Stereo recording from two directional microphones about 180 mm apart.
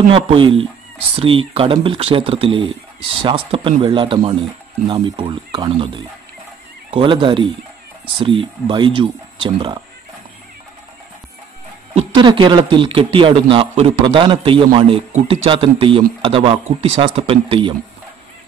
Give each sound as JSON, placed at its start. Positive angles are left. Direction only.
{"t": 0.1, "sound": "a man's voice", "side_deg": -30}
{"t": 12.2, "sound": "a man's voice", "side_deg": -25}